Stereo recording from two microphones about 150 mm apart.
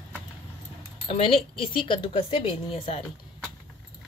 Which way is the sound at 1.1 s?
40° left (ahead or behind).